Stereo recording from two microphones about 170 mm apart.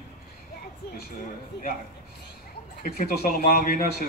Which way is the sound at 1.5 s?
80° left.